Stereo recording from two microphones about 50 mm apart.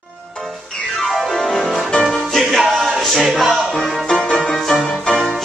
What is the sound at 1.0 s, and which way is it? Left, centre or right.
Music, centre.